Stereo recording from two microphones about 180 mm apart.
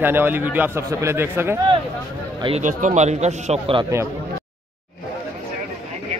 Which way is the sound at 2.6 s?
40° right (ahead or behind).